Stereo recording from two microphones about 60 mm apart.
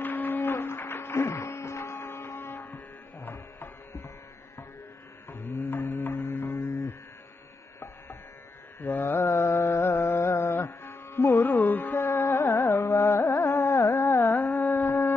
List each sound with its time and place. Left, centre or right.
0.0 s a sound: left
3.2 s tabla: left
5.9 s music: left
8.8 s mantra: left
12.2 s carnatic music: left
14.9 s a sound: left